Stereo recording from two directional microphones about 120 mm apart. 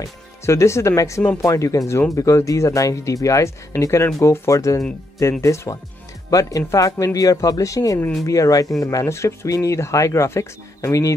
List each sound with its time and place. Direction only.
0.5 s speech: 25° left (ahead or behind)